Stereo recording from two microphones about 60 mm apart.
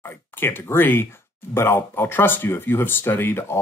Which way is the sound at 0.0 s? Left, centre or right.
Left.